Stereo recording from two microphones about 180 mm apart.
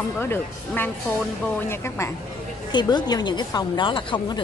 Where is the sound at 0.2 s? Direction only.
10° left (ahead or behind).